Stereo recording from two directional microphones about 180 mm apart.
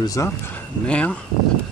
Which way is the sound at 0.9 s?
5° left (ahead or behind).